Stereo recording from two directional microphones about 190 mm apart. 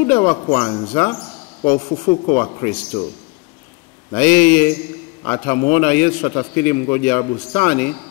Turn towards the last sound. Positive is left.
turn(degrees=10)  # may be behind; listen again after turning